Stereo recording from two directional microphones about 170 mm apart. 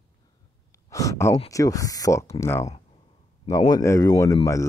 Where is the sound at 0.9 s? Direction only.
20° left (ahead or behind).